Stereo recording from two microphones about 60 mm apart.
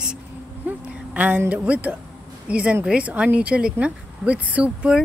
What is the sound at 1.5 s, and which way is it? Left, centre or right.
Speech, right.